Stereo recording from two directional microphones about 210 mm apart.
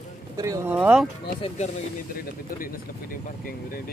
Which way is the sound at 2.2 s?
45° left (ahead or behind).